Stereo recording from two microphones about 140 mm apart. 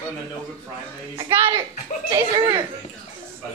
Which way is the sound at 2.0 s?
25° right (ahead or behind).